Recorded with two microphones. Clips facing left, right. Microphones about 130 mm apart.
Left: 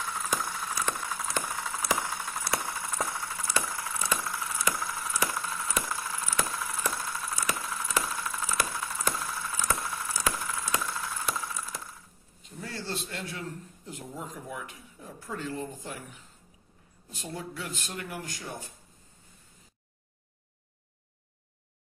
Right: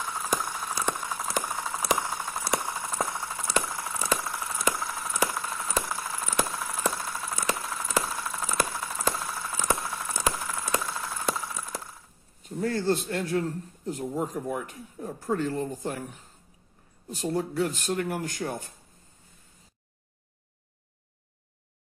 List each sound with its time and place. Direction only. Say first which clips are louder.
0.0 s a sound: right 2 dB; 20° right (ahead or behind)
11.2 s wood: right 5 dB; 25° right (ahead or behind)
12.4 s a man's voice: right 12 dB; 50° right (ahead or behind)